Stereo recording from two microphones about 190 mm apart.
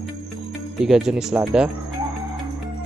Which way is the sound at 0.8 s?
Centre (ahead or behind).